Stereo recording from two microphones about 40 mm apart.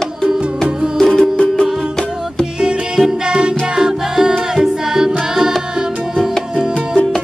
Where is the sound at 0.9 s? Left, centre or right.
Centre.